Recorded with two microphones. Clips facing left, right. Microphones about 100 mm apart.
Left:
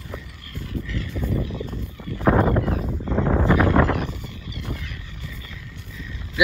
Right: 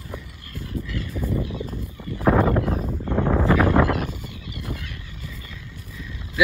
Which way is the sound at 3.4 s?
25° left (ahead or behind).